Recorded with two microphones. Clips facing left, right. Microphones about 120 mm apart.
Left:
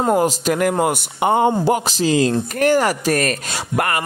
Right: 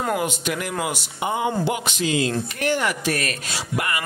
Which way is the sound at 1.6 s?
40° left (ahead or behind).